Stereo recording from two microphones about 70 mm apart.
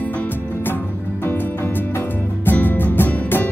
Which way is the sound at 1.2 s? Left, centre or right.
Left.